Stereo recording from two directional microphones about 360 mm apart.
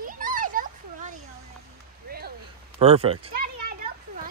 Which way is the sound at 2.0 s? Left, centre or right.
Right.